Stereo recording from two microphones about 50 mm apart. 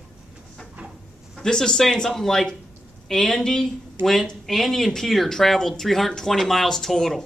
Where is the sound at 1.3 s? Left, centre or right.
Centre.